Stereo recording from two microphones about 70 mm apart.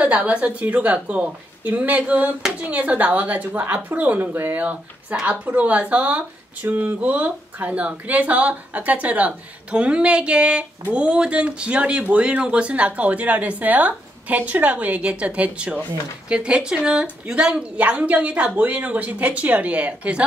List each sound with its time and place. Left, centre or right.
0.0 s speech: centre